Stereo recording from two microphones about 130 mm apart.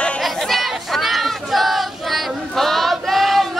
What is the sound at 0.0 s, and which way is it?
Crowd, 5° left (ahead or behind).